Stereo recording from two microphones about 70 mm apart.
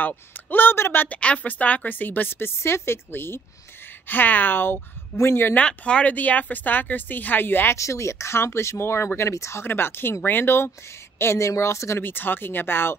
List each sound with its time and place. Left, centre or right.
0.0 s a woman's voice: left
1.0 s a woman's voice: left
5.5 s a woman's voice: centre; by 7.7 s left
7.7 s speech: left
12.0 s speech: left